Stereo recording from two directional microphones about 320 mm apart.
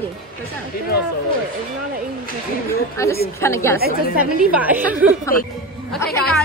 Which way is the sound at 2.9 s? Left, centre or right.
Centre.